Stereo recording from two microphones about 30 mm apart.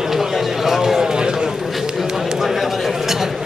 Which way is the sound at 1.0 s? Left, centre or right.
Right.